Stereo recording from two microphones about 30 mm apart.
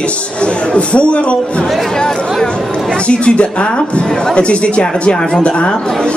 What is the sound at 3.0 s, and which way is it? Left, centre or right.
Speech, left.